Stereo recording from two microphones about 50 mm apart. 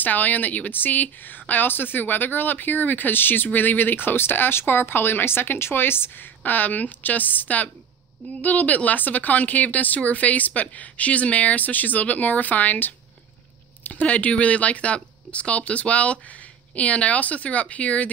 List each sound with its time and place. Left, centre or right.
0.0 s speech: left
6.4 s speech: left